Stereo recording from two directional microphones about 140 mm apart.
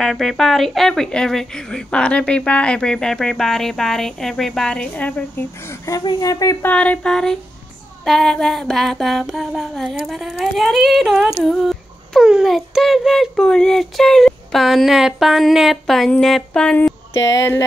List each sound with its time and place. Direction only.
0.0 s speech: centre (ahead or behind)
5.7 s speech: 25° left (ahead or behind)
6.6 s a sound: 10° left (ahead or behind)
8.0 s speech: 5° left (ahead or behind)
17.3 s speech: 25° left (ahead or behind)